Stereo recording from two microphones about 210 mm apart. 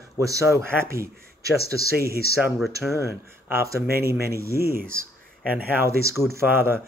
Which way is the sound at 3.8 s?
45° right (ahead or behind).